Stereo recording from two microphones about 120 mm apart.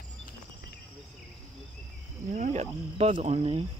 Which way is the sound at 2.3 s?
75° right (ahead or behind).